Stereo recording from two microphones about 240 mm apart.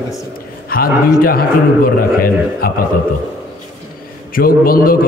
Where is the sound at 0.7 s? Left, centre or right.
Left.